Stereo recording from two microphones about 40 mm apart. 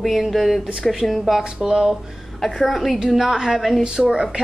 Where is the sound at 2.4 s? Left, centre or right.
Centre.